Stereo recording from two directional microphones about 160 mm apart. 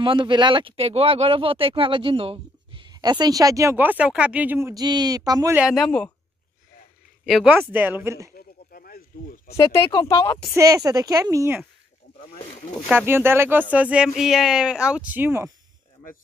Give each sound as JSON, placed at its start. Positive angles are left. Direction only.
{"t": 0.0, "sound": "speech", "side_deg": -30}
{"t": 5.5, "sound": "speech", "side_deg": -5}
{"t": 5.8, "sound": "speech", "side_deg": 10}
{"t": 7.4, "sound": "speech", "side_deg": -10}
{"t": 8.4, "sound": "snake", "side_deg": 65}
{"t": 9.8, "sound": "speech", "side_deg": 20}
{"t": 10.5, "sound": "speech", "side_deg": -20}
{"t": 12.8, "sound": "speech", "side_deg": -15}